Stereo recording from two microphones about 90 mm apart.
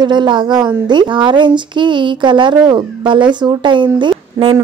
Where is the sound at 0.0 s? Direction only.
55° right (ahead or behind).